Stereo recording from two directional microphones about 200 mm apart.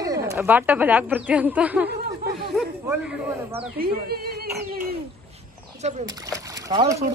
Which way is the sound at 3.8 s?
50° right (ahead or behind).